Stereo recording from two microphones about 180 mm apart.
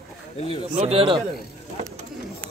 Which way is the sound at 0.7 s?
35° right (ahead or behind).